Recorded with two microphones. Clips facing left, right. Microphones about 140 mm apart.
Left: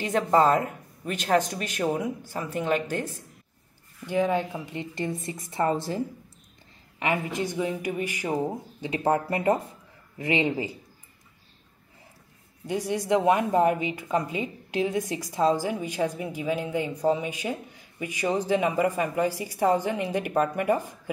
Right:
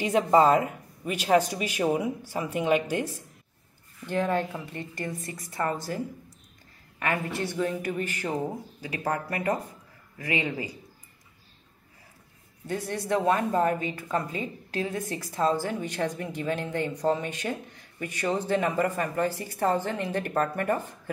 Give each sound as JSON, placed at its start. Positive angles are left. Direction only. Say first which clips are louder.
{"t": 0.0, "sound": "speech", "louder": "right 1 dB", "side_deg": -10}
{"t": 4.0, "sound": "a woman's voice", "louder": "left 2 dB", "side_deg": 10}
{"t": 7.0, "sound": "a woman's voice", "louder": "left 2 dB", "side_deg": 15}
{"t": 12.6, "sound": "speech", "louder": "left 3 dB", "side_deg": 15}